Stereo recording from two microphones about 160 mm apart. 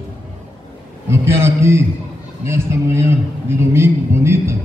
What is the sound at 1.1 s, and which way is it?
A man's voice, 15° right (ahead or behind).